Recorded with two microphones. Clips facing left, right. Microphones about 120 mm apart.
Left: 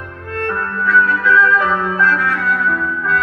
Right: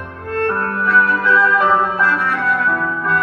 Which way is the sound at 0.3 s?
30° right (ahead or behind).